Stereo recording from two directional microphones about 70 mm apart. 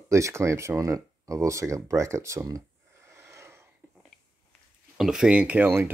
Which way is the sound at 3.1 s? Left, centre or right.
Right.